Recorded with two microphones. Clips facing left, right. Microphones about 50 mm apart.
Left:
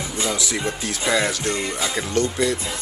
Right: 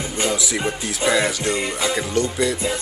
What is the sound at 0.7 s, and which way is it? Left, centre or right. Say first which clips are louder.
Music: right 3 dB; centre.